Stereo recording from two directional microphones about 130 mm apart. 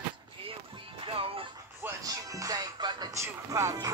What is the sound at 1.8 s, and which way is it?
Music, 25° right (ahead or behind).